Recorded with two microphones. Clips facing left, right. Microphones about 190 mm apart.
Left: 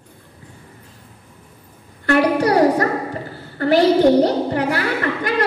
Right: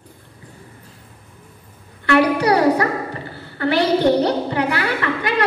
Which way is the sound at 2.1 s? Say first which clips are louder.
Even; 45° left (ahead or behind).